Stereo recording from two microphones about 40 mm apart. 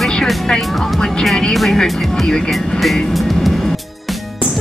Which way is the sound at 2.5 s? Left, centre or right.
Centre.